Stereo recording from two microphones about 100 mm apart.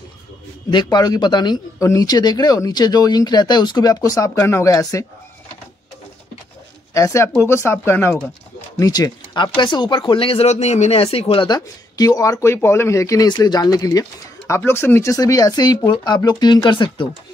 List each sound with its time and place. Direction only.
0.9 s speech: 45° left (ahead or behind)
1.8 s speech: 35° left (ahead or behind)
6.9 s speech: 30° left (ahead or behind)
8.7 s speech: 35° left (ahead or behind); by 11.4 s 75° left (ahead or behind)
11.4 s speech: 40° left (ahead or behind)
13.3 s speech: 40° left (ahead or behind)
14.6 s speech: 20° left (ahead or behind); by 17.1 s 55° left (ahead or behind)